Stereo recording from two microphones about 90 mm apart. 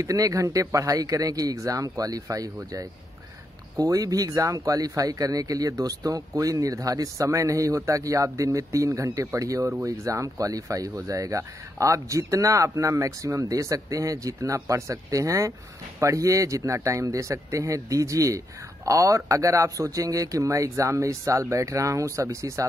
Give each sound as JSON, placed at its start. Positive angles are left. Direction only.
{"t": 0.0, "sound": "speech", "side_deg": -40}